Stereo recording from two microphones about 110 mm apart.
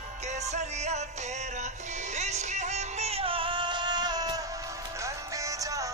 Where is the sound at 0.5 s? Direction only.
90° right.